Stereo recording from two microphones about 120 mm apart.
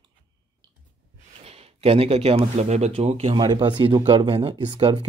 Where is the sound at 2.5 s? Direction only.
65° right (ahead or behind).